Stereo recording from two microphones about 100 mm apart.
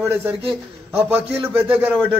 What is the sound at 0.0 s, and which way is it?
A man's voice, 25° right (ahead or behind).